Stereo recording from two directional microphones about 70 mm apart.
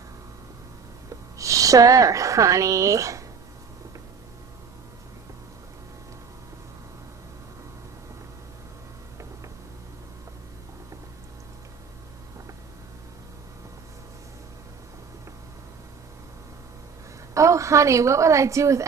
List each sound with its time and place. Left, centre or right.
1.4 s a woman's voice: right
17.3 s a woman's voice: right